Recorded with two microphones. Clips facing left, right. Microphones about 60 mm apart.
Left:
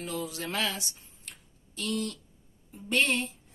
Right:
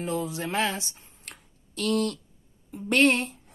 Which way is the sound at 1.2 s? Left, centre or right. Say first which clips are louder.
Right 4 dB; right.